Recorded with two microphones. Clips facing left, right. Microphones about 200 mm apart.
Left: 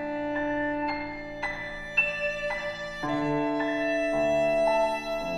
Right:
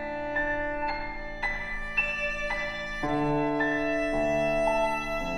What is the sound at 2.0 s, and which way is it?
Music, 30° left (ahead or behind).